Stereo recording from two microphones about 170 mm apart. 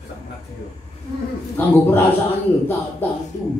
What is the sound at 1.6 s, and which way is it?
Speech, 10° left (ahead or behind).